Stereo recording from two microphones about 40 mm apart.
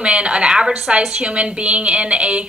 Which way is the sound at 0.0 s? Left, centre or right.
Right.